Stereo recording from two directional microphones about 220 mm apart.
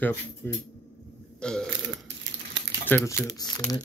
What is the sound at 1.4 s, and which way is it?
Burping, 5° left (ahead or behind).